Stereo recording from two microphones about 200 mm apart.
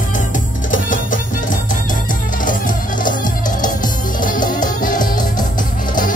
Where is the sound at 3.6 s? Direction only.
40° left (ahead or behind).